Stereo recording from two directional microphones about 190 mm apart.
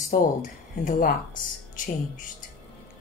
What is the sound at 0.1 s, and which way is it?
A woman's voice, 45° left (ahead or behind).